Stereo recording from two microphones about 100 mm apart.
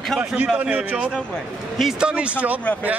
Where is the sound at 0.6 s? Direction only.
10° right (ahead or behind).